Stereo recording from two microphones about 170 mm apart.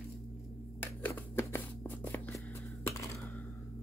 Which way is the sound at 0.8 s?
15° left (ahead or behind).